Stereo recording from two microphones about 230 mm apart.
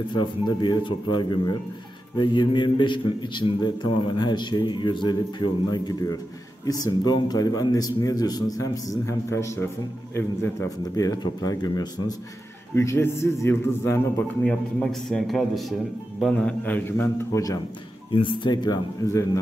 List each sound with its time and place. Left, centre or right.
0.1 s a man's voice: centre